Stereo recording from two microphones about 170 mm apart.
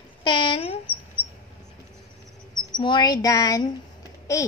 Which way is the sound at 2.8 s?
25° left (ahead or behind).